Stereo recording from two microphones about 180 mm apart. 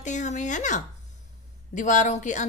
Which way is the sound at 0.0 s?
40° left (ahead or behind).